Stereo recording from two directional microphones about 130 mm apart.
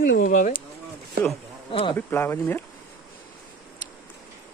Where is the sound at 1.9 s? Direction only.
15° left (ahead or behind).